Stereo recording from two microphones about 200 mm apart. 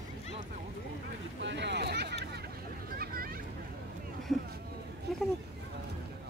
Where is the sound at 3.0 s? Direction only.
45° right (ahead or behind).